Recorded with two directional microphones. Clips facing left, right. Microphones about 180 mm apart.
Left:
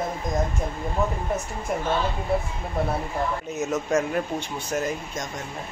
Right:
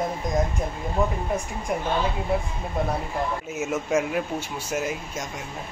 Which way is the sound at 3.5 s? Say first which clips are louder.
Even; 10° right (ahead or behind).